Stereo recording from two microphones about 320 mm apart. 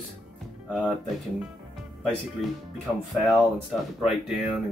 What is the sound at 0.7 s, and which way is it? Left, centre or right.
Speech, centre.